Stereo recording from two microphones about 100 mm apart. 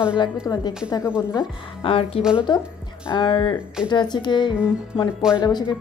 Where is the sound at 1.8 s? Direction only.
65° left (ahead or behind).